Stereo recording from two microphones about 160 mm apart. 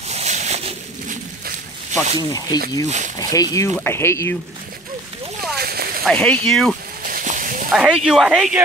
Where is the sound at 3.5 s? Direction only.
20° left (ahead or behind).